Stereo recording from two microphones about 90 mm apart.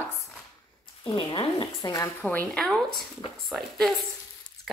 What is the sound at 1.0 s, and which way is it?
Speech, 65° left (ahead or behind).